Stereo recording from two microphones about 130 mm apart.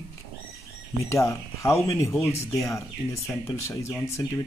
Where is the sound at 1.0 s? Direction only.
20° left (ahead or behind).